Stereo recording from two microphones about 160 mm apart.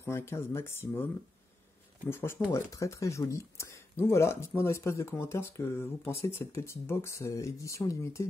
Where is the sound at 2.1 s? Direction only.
15° left (ahead or behind).